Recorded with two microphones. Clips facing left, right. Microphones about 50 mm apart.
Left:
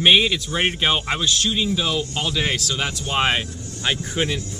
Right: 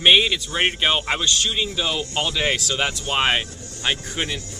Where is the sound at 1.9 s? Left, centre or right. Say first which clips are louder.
Even; centre.